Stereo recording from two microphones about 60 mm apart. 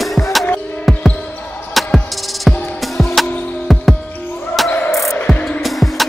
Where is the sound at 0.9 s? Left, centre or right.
Centre.